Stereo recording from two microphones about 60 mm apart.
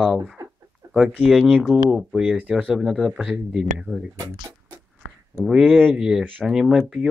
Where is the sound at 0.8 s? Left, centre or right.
Right.